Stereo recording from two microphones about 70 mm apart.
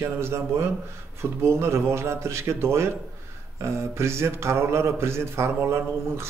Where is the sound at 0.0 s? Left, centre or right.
Right.